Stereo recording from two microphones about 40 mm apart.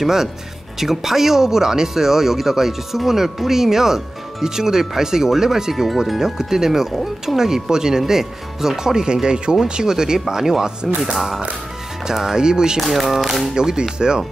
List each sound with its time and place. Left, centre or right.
0.0 s speech: centre
12.8 s speech: centre
13.6 s speech: centre